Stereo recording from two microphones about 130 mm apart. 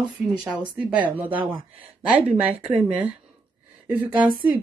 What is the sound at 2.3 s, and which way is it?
Speech, 10° right (ahead or behind).